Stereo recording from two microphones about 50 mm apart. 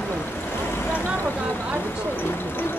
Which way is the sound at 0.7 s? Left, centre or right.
Left.